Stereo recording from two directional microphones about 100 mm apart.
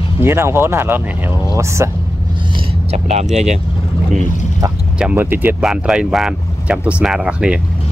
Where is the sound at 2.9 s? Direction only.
90° right.